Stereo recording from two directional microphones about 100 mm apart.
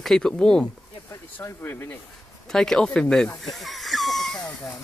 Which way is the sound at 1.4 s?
25° left (ahead or behind).